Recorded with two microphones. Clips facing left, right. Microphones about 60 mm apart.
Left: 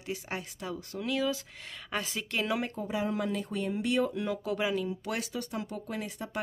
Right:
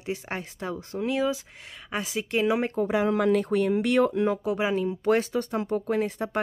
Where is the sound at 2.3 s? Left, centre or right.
Right.